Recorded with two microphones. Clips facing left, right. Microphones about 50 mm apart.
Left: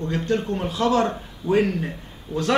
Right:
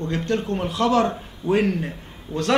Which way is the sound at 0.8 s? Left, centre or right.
Right.